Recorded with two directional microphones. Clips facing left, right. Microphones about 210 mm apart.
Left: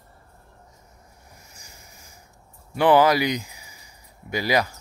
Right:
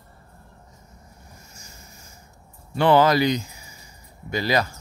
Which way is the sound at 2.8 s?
15° left (ahead or behind).